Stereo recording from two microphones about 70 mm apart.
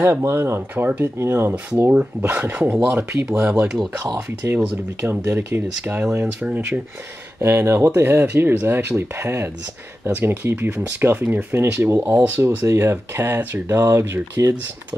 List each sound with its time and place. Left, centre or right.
0.0 s speech: right
2.9 s speech: right
7.3 s speech: right
10.7 s speech: centre
12.4 s speech: right
13.7 s speech: right